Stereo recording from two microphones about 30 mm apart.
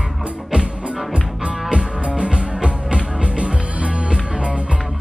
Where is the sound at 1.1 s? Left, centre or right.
Right.